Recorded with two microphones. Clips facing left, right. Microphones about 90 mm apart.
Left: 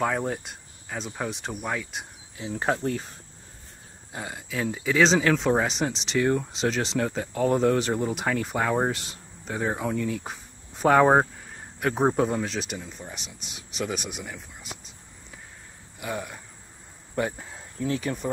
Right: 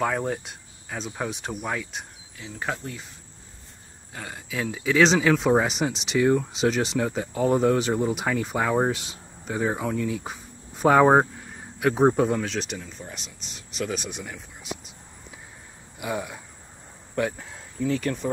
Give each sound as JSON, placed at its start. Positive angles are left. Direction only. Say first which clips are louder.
{"t": 0.0, "sound": "speech", "louder": "right 1 dB", "side_deg": 0}
{"t": 2.5, "sound": "speech", "louder": "left 6 dB", "side_deg": 40}
{"t": 4.3, "sound": "speech", "louder": "even", "side_deg": 0}
{"t": 16.0, "sound": "speech", "louder": "right 3 dB", "side_deg": -5}
{"t": 17.1, "sound": "speech", "louder": "right 1 dB", "side_deg": 5}